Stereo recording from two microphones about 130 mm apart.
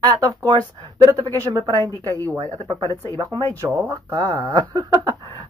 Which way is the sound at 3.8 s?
30° right (ahead or behind).